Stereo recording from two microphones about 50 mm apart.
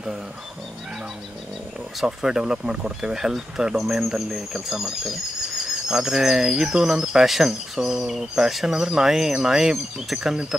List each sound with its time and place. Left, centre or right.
2.0 s speech: centre
3.7 s speech: centre